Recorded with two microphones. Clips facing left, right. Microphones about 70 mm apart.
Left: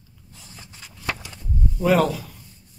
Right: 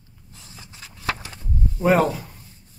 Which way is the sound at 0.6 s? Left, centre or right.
Right.